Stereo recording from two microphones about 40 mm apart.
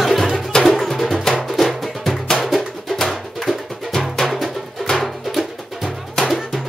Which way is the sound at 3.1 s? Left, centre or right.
Centre.